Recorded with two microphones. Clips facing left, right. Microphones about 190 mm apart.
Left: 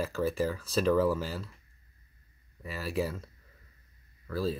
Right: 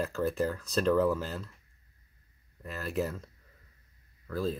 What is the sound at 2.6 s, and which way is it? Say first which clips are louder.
Speech: even; 5° left (ahead or behind).